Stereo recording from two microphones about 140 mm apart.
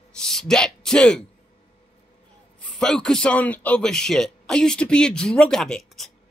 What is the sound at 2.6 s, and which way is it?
Speech, 5° left (ahead or behind).